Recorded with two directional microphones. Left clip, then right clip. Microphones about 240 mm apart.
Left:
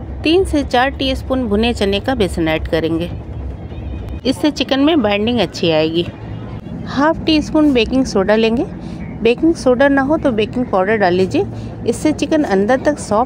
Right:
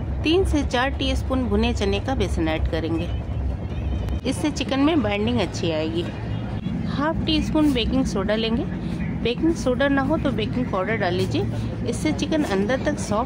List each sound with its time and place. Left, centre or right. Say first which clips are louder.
0.2 s speech: left 7 dB; centre
4.2 s speech: left 9 dB; centre